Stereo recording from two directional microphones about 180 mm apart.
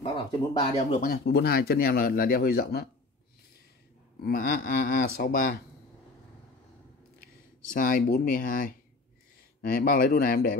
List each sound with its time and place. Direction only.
0.0 s speech: 30° left (ahead or behind)
1.0 s speech: 60° left (ahead or behind)
4.2 s speech: 55° left (ahead or behind)
7.7 s speech: 50° left (ahead or behind)